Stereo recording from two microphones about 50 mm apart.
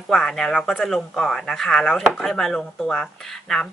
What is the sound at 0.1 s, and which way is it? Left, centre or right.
Speech, centre.